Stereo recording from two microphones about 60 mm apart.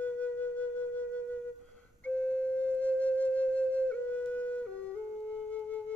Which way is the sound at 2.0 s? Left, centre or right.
Left.